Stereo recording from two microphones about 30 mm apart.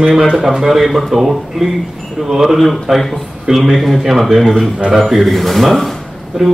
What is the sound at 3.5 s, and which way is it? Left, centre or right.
A man's voice, centre.